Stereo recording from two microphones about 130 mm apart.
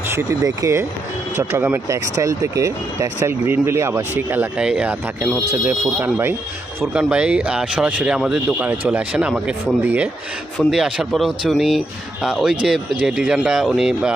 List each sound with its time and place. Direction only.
0.1 s speech: 20° right (ahead or behind); by 5.7 s 5° right (ahead or behind)
5.7 s speech: 15° right (ahead or behind)